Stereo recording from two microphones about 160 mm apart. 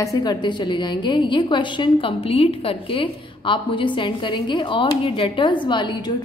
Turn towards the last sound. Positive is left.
turn(degrees=30)  # may be behind; listen again after turning